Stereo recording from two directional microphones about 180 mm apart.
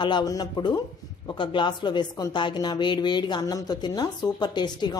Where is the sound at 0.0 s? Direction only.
25° left (ahead or behind).